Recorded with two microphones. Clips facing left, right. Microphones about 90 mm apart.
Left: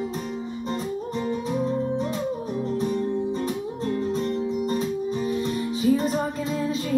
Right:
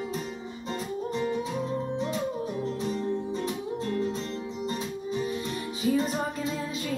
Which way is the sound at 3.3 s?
45° left (ahead or behind).